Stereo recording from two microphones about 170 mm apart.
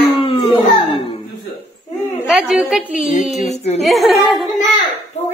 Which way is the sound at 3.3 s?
40° left (ahead or behind).